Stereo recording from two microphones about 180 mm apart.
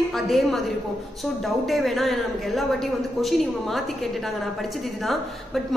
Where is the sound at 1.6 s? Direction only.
Centre (ahead or behind).